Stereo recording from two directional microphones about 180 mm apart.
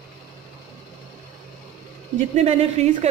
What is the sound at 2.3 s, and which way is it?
Speech, 35° right (ahead or behind).